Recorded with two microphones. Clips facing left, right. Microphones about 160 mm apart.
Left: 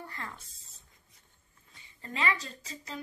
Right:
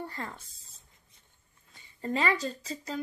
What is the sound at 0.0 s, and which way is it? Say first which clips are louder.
Speech: right 5 dB; 35° right (ahead or behind).